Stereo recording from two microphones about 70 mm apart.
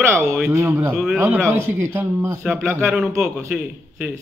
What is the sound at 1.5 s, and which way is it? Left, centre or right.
Speech, right.